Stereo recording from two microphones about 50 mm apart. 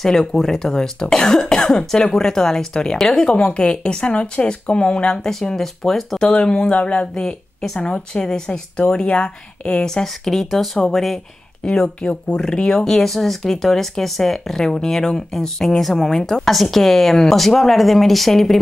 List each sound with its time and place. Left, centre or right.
0.0 s speech: centre
11.6 s speech: centre
12.4 s speech: centre